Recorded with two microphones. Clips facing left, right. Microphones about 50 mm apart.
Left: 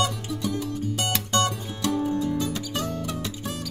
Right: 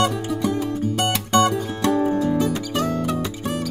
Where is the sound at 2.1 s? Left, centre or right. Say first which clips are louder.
Right 6 dB; right.